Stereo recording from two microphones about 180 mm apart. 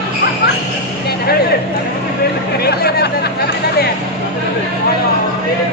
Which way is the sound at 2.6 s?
65° left (ahead or behind).